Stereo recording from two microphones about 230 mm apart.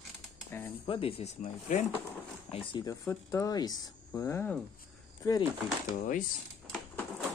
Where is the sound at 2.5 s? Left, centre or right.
Centre.